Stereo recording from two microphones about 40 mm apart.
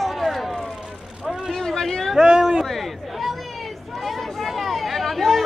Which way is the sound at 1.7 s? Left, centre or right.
Centre.